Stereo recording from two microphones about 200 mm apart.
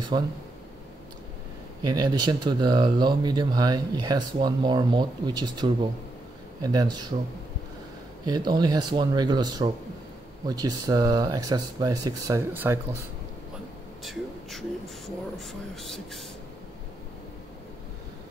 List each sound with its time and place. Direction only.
0.1 s speech: 25° right (ahead or behind)
1.8 s speech: 20° right (ahead or behind)
8.3 s speech: 20° right (ahead or behind)
15.3 s speech: centre (ahead or behind)